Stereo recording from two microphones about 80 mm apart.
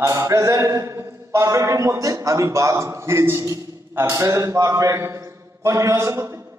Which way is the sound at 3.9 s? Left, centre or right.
Right.